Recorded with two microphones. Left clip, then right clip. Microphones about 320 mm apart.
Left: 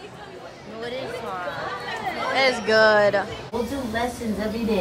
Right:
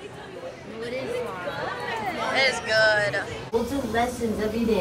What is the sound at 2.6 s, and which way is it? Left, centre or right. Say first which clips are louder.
Speech: left 4 dB; left.